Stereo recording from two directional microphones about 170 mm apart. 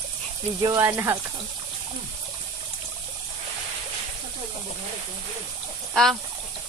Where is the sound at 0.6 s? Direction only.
20° right (ahead or behind).